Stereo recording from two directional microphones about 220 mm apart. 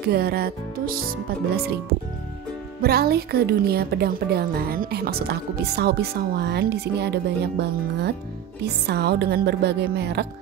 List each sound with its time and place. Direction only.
0.1 s speech: 45° right (ahead or behind)
2.8 s speech: 45° right (ahead or behind)